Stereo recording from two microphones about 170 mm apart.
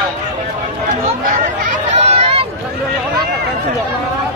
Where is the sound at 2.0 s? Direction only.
35° right (ahead or behind).